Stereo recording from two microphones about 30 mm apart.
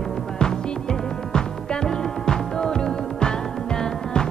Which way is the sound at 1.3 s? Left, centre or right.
Left.